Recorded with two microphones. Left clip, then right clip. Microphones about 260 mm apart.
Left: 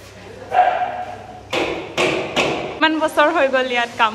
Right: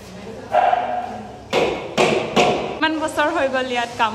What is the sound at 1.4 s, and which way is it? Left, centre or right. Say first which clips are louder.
Tap: right 2 dB; right.